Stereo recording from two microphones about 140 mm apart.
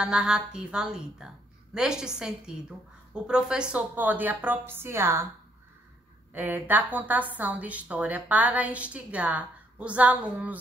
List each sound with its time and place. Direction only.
0.0 s a woman's voice: 5° right (ahead or behind)
6.3 s a woman's voice: 15° right (ahead or behind)